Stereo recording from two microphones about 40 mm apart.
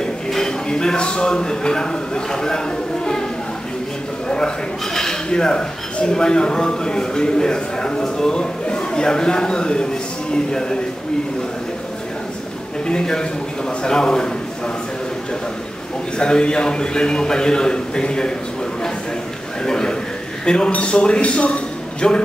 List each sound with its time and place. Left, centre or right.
0.0 s speech: centre
4.3 s a man's voice: left
12.8 s speech: centre
16.2 s speech: left
19.6 s a man's voice: left